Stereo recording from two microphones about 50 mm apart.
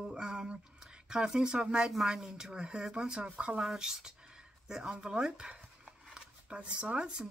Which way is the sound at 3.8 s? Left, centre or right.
Centre.